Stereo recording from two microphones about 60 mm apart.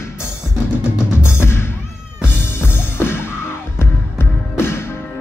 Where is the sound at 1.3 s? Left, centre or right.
Left.